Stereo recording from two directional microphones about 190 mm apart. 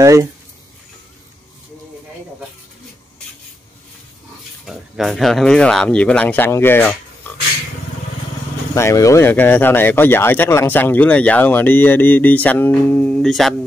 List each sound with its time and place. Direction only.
0.0 s speech: 15° right (ahead or behind)
4.6 s speech: centre (ahead or behind)
8.7 s speech: 15° left (ahead or behind)